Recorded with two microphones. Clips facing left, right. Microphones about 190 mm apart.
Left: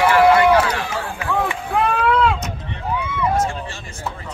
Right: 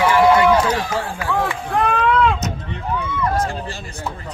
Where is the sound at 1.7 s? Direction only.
Centre (ahead or behind).